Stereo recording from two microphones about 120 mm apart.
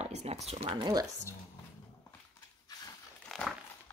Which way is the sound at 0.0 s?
65° right (ahead or behind).